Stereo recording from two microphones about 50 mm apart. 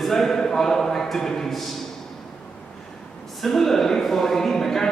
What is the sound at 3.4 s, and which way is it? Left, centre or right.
Speech, centre.